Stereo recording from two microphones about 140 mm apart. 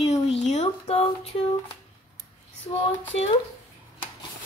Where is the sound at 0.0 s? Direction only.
50° left (ahead or behind).